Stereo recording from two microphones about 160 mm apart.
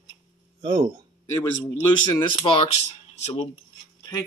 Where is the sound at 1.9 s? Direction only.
30° left (ahead or behind).